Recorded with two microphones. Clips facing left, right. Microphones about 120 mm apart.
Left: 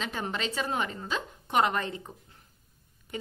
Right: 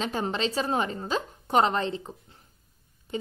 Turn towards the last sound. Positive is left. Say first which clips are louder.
# right 5 dB
turn(degrees=-25)  # may be behind; listen again after turning